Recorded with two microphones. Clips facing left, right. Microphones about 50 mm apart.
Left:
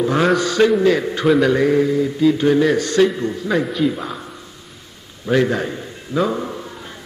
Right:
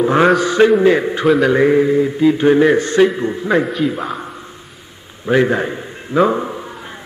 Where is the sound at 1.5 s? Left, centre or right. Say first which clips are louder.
Right 3 dB; right.